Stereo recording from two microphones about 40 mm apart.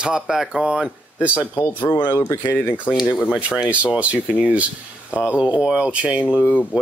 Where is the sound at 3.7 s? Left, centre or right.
Right.